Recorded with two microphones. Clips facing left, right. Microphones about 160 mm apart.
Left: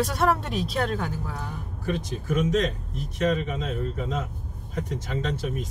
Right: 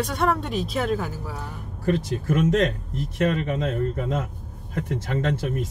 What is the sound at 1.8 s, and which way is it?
Speech, 60° right (ahead or behind).